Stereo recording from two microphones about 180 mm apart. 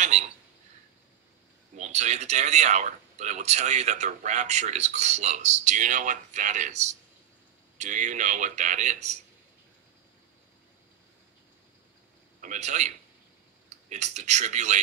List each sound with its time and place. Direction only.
0.1 s speech: 40° right (ahead or behind)
1.8 s a man's voice: 40° right (ahead or behind)
12.4 s speech: 40° right (ahead or behind)